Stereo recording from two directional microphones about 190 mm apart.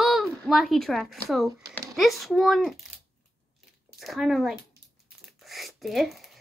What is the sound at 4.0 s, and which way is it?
Speech, centre (ahead or behind).